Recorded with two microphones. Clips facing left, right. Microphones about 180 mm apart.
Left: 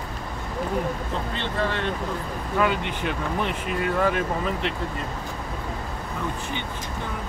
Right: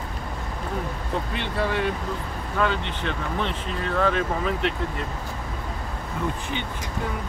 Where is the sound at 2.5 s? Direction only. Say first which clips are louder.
Left 1 dB; 10° left (ahead or behind).